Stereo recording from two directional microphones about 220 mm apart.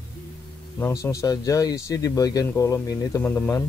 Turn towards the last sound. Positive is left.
turn(degrees=10)  # may be behind; listen again after turning